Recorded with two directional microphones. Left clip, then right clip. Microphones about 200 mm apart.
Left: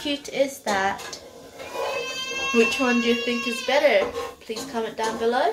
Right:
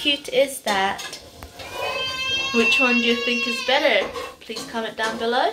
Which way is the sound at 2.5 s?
5° left (ahead or behind).